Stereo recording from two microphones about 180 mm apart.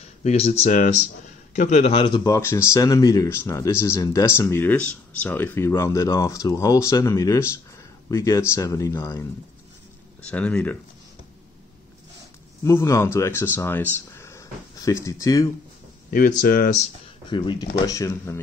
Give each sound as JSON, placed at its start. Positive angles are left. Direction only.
{"t": 0.0, "sound": "speech", "side_deg": 35}
{"t": 10.2, "sound": "speech", "side_deg": 5}
{"t": 12.6, "sound": "speech", "side_deg": 15}
{"t": 16.1, "sound": "speech", "side_deg": 55}
{"t": 17.3, "sound": "speech", "side_deg": 25}